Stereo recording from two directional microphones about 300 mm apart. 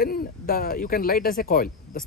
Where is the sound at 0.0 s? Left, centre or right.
Left.